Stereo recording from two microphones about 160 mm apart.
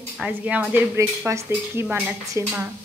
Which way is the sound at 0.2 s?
10° right (ahead or behind).